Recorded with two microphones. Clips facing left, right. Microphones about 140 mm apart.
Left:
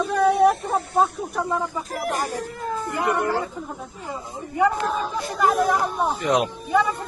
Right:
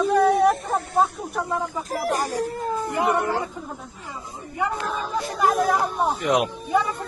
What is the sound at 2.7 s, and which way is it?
Cat, 25° right (ahead or behind).